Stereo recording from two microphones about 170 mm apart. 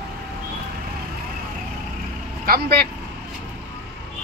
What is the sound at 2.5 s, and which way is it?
Speech, 70° right (ahead or behind).